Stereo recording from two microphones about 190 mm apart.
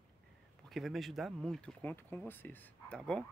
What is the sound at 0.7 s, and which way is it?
Speech, centre (ahead or behind).